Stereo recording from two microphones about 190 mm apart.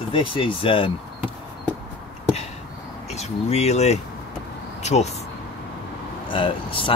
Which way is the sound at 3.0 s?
35° left (ahead or behind).